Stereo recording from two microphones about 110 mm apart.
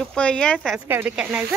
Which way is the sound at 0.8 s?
20° right (ahead or behind).